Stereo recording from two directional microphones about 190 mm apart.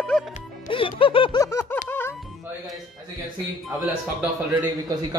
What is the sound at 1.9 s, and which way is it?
Music, 10° left (ahead or behind).